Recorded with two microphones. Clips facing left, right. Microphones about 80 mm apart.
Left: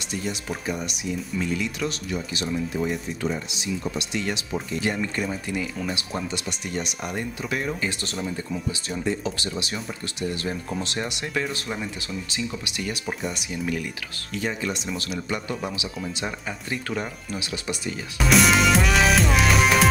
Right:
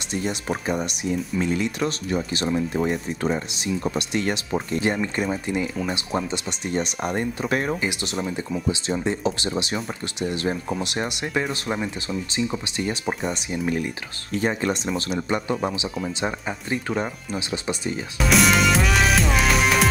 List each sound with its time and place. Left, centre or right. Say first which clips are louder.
0.1 s speech: right 4 dB; right
5.0 s speech: right 3 dB; right
7.8 s speech: right 3 dB; centre
10.7 s speech: right 3 dB; centre
18.1 s music: even; centre